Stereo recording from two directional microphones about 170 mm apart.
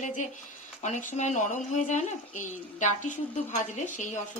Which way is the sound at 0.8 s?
45° left (ahead or behind).